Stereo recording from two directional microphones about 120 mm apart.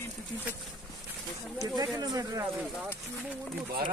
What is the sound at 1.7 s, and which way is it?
Speech, 30° right (ahead or behind).